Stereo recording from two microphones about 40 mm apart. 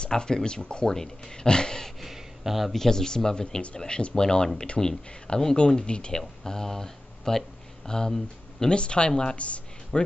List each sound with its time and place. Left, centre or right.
0.0 s speech: centre
0.8 s speech: centre
2.0 s a sound: centre
2.7 s speech: centre
6.4 s speech: centre
9.4 s a sound: left